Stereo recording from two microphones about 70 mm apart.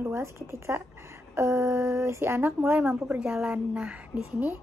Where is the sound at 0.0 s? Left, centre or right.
Right; by 4.2 s centre.